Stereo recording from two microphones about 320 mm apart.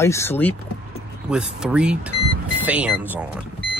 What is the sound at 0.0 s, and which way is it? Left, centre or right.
A man's voice, centre.